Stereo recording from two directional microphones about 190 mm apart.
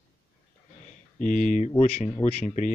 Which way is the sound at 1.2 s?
40° left (ahead or behind).